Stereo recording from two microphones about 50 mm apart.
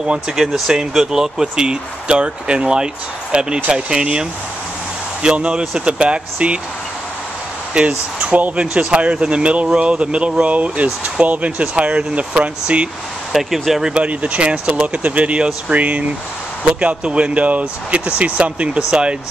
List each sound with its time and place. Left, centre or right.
0.0 s speech: centre
7.7 s speech: right
13.3 s speech: centre
13.9 s speech: right